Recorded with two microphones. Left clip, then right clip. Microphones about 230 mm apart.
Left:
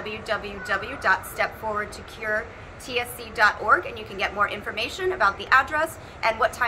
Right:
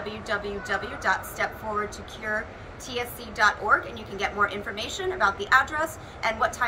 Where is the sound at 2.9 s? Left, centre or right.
Centre.